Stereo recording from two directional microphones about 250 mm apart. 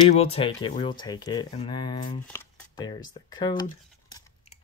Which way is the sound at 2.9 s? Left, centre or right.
Centre.